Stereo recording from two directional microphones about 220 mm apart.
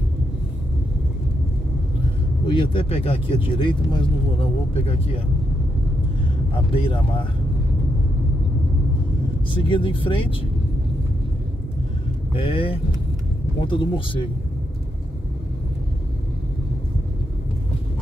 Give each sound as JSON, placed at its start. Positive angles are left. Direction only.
{"t": 2.4, "sound": "speech", "side_deg": 20}
{"t": 6.7, "sound": "speech", "side_deg": 25}
{"t": 9.7, "sound": "speech", "side_deg": 25}
{"t": 12.4, "sound": "speech", "side_deg": 25}